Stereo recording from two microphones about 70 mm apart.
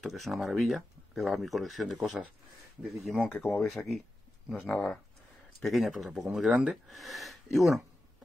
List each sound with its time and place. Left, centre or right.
0.0 s speech: centre
3.3 s speech: left
3.6 s speech: centre
4.6 s speech: centre
5.6 s speech: centre
6.5 s speech: centre
6.9 s speech: centre